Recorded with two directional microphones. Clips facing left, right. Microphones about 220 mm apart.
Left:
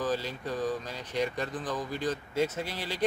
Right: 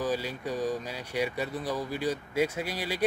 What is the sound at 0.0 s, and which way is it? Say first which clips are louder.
Speech: right 1 dB; 10° right (ahead or behind).